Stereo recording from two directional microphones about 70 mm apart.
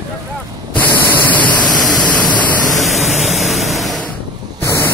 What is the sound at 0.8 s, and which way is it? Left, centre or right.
Spray, left.